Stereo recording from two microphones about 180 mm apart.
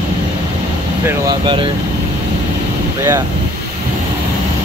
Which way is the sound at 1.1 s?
25° right (ahead or behind).